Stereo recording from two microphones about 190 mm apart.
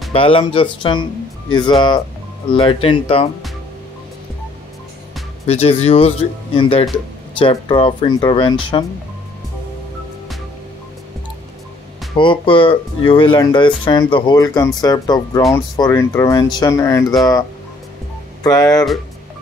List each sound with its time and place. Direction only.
0.1 s speech: 30° left (ahead or behind)
5.5 s speech: 30° left (ahead or behind)
12.2 s speech: 25° left (ahead or behind)
18.4 s speech: 20° left (ahead or behind)